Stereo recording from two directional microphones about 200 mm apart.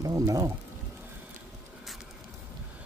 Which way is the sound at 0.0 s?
15° right (ahead or behind).